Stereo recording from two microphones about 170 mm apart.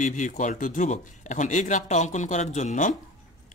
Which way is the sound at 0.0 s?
45° left (ahead or behind).